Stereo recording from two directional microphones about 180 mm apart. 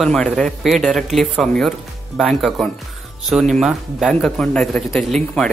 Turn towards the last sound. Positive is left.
turn(degrees=0)  # may be behind; listen again after turning